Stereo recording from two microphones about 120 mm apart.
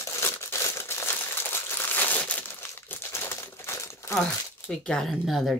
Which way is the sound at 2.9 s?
20° left (ahead or behind).